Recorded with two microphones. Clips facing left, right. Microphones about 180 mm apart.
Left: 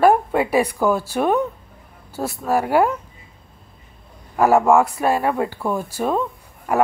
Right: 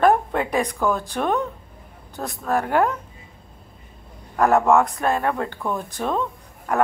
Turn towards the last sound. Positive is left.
turn(degrees=5)  # may be behind; listen again after turning